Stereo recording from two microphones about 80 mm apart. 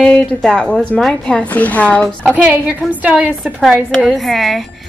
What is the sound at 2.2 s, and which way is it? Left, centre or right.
A woman's voice, right.